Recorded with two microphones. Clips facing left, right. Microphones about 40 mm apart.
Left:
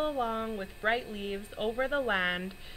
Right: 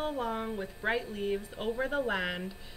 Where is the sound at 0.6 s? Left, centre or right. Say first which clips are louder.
Left 2 dB; centre.